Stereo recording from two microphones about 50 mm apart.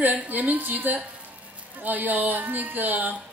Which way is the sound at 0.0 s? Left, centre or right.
Right.